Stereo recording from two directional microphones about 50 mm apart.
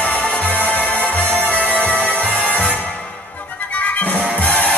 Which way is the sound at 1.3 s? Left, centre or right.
Right.